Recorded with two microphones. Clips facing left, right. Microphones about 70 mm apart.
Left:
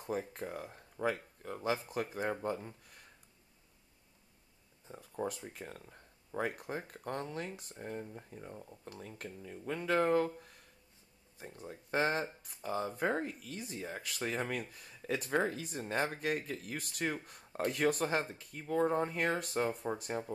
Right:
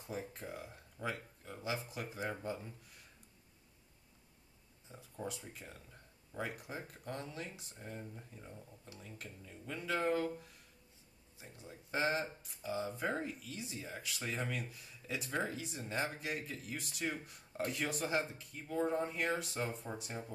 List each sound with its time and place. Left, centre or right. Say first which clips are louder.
0.0 s speech: left 6 dB; left
4.8 s speech: left 6 dB; left
8.5 s speech: left 5 dB; left
11.3 s speech: left 6 dB; left